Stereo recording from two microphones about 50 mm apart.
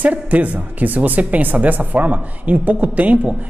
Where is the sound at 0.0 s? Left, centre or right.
Right.